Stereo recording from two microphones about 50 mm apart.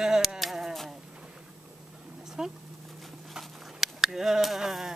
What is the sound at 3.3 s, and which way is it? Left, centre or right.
Sheep, centre.